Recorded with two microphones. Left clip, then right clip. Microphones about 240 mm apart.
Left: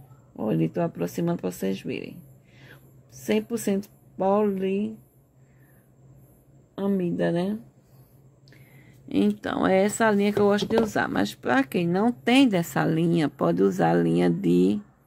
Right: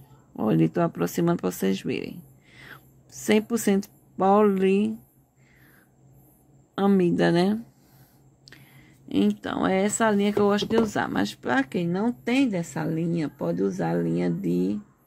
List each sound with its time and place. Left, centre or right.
0.4 s speech: centre
6.7 s speech: right
9.1 s speech: centre; by 14.8 s left